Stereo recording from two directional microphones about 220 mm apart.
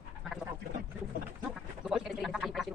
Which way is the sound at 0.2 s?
Centre (ahead or behind).